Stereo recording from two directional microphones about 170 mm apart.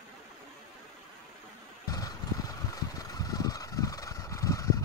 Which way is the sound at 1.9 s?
20° left (ahead or behind).